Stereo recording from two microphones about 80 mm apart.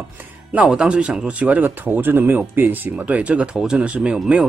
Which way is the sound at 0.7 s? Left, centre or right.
Centre.